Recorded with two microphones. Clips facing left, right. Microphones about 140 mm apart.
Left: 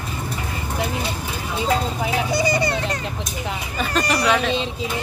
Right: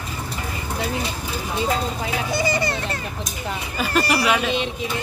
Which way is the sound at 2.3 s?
20° left (ahead or behind).